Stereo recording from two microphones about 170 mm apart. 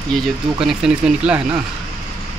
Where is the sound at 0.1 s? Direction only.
5° right (ahead or behind).